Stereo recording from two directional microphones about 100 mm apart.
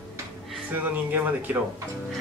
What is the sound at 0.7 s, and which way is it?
Speech, 20° right (ahead or behind).